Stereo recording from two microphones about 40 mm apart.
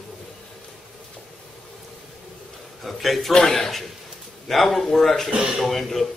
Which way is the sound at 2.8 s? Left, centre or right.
Centre.